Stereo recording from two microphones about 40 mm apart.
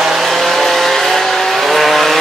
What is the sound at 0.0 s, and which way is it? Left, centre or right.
Vehicle, centre.